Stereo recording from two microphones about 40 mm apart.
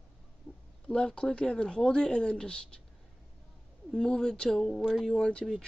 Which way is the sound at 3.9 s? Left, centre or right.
Centre.